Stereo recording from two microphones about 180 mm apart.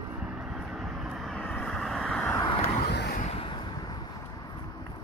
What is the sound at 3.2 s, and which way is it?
Vehicle, 30° left (ahead or behind).